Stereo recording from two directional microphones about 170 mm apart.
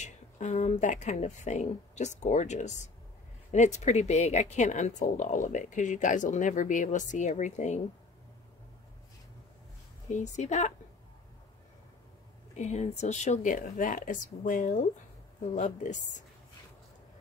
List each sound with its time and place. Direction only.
0.0 s speech: 45° left (ahead or behind)
10.0 s speech: 45° left (ahead or behind)
12.5 s speech: 40° left (ahead or behind)